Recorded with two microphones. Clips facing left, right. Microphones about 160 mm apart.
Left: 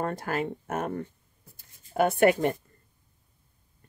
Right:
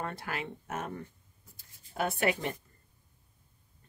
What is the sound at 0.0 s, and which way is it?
Speech, 45° left (ahead or behind).